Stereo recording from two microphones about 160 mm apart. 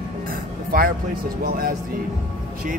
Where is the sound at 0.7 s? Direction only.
65° right (ahead or behind).